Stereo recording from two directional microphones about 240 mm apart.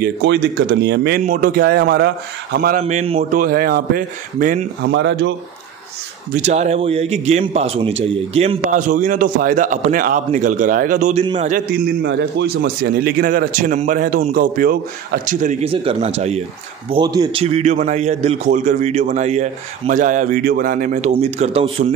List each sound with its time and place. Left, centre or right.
0.0 s a man's voice: right
2.8 s a man's voice: right
4.9 s speech: right
6.3 s a man's voice: right